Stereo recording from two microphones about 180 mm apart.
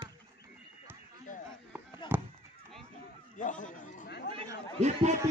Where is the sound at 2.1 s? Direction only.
10° right (ahead or behind).